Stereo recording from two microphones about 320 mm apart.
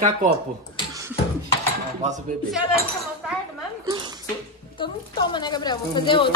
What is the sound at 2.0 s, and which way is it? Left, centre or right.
Speech, right.